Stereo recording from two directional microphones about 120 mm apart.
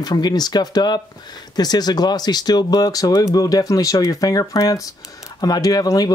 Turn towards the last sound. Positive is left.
turn(degrees=35)  # may be behind; listen again after turning